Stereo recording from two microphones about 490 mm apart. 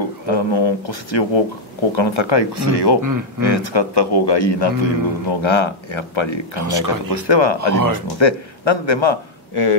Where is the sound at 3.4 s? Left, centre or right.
Left.